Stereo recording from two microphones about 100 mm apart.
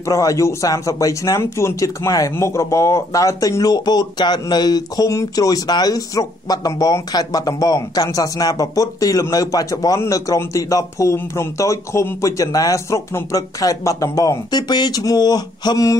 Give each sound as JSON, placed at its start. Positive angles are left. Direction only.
{"t": 0.1, "sound": "speech", "side_deg": 35}